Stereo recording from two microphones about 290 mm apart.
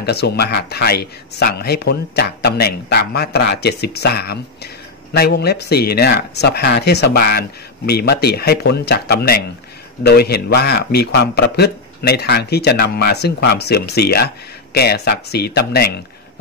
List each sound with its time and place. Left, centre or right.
0.0 s a man's voice: left